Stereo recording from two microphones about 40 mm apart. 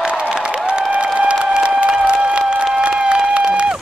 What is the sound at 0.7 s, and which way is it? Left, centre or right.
Applause, right.